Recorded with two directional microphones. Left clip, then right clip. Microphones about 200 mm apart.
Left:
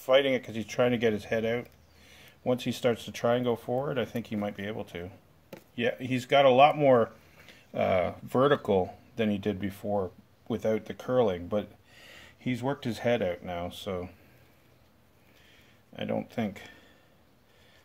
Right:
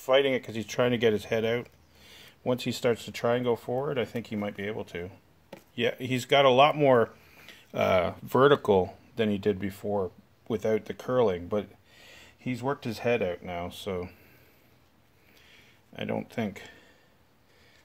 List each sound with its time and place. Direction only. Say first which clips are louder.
0.0 s speech: even; 25° right (ahead or behind)
5.8 s speech: right 1 dB; 40° right (ahead or behind); by 12.0 s 25° right (ahead or behind)
12.0 s speech: left 2 dB; 5° right (ahead or behind); by 14.1 s 30° right (ahead or behind)
15.4 s a sound: right 3 dB; 30° right (ahead or behind)